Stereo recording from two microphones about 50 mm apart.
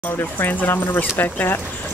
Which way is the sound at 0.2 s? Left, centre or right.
Left.